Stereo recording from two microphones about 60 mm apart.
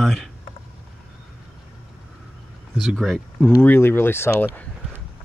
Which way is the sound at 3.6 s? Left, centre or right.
Left.